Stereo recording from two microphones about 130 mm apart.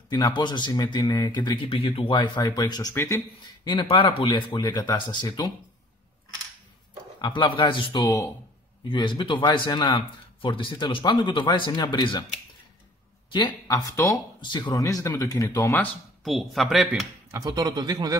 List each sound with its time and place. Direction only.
0.1 s speech: 35° left (ahead or behind)
3.6 s speech: 40° left (ahead or behind)
7.2 s speech: 35° left (ahead or behind)
13.3 s speech: 35° left (ahead or behind)
13.7 s speech: 25° left (ahead or behind)
14.4 s speech: 35° left (ahead or behind)
15.7 s speech: 5° left (ahead or behind)
17.3 s a man's voice: 30° right (ahead or behind)